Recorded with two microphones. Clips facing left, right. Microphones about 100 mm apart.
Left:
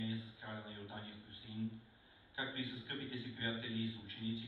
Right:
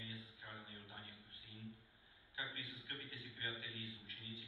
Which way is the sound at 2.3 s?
25° left (ahead or behind).